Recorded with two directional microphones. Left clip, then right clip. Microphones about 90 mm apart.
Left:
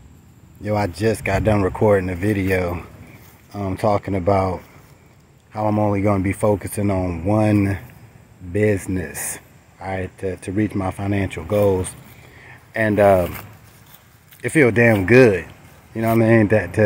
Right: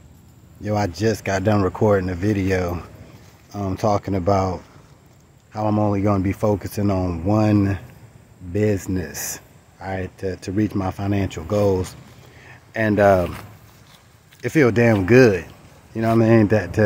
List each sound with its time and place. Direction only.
0.6 s speech: 35° right (ahead or behind)
7.1 s speech: 50° right (ahead or behind)
7.4 s speech: 30° right (ahead or behind)
14.4 s speech: 35° right (ahead or behind)